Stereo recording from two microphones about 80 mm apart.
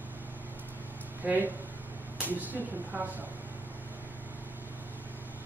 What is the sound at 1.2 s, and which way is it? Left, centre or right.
A man's voice, right.